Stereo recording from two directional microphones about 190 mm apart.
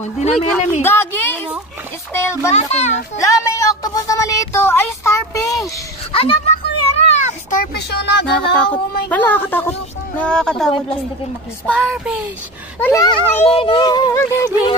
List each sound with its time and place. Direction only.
0.0 s speech: 35° left (ahead or behind)
0.8 s a woman's voice: 10° left (ahead or behind)
2.5 s speech: 35° left (ahead or behind)
3.2 s a sound: 15° left (ahead or behind)
6.1 s speech: 30° left (ahead or behind)
7.0 s cat: 40° left (ahead or behind)
7.7 s a sound: 60° left (ahead or behind)
9.1 s speech: 10° left (ahead or behind)
12.8 s speech: 15° left (ahead or behind)